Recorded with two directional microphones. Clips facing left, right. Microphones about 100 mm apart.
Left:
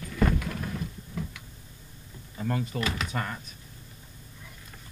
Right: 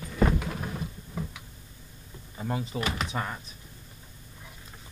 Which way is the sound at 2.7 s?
15° right (ahead or behind).